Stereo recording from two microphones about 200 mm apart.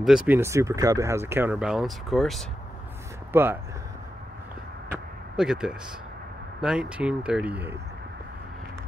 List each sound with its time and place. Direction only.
0.0 s speech: 5° right (ahead or behind)
0.4 s speech: 15° right (ahead or behind); by 2.4 s centre (ahead or behind)
3.3 s speech: 10° right (ahead or behind)
4.8 s a sound: 5° right (ahead or behind)
6.6 s speech: 5° right (ahead or behind)